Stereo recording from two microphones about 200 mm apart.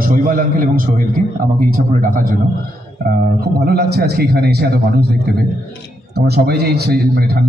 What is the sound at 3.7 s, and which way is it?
A man's voice, 50° right (ahead or behind).